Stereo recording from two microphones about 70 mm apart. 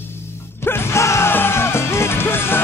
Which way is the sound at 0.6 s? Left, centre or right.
Left.